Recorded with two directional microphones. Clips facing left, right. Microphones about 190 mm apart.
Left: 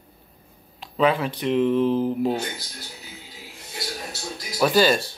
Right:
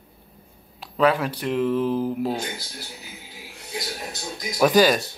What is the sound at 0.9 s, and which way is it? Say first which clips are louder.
Speech: right 1 dB; 5° right (ahead or behind).